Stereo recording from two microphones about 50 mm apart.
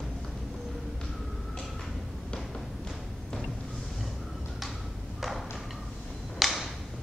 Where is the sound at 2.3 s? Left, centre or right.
Centre.